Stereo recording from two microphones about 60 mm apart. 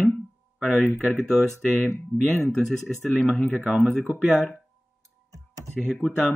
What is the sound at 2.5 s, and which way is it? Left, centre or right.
Speech, centre.